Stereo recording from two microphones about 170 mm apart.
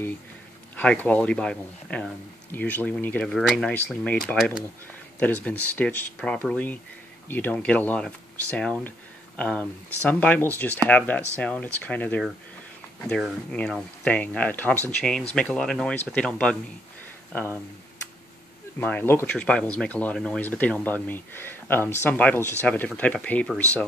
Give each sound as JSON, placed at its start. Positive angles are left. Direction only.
{"t": 0.7, "sound": "speech", "side_deg": 10}
{"t": 18.8, "sound": "speech", "side_deg": 10}